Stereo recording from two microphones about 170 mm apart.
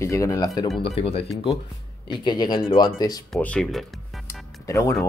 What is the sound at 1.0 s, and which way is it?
Speech, 35° left (ahead or behind).